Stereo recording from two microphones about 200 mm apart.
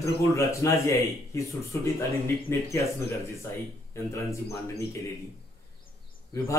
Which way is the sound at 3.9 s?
15° left (ahead or behind).